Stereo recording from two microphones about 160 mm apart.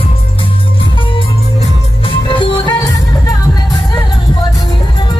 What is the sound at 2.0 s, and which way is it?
Music, 30° left (ahead or behind).